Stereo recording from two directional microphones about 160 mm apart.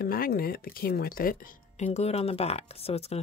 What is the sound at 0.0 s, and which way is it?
Speech, 65° left (ahead or behind).